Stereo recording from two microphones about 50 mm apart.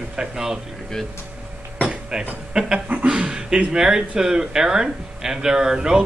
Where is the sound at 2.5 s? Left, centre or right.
Centre.